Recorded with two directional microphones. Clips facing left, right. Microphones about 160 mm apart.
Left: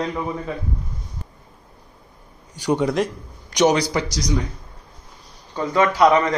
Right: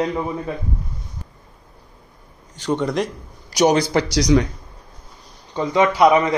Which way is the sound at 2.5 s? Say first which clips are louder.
Left 1 dB; 10° left (ahead or behind).